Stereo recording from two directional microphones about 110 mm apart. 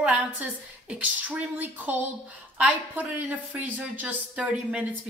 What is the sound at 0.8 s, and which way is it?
Speech, 10° right (ahead or behind).